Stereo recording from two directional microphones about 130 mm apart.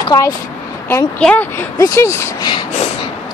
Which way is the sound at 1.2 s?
10° left (ahead or behind).